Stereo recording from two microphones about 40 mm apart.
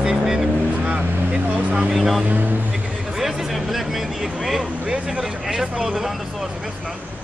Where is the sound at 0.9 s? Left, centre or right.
Right.